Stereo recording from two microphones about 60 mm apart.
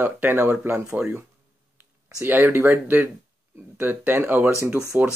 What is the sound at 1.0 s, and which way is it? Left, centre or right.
Speech, right.